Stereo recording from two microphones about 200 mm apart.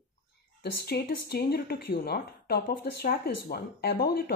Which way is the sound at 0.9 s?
50° left (ahead or behind).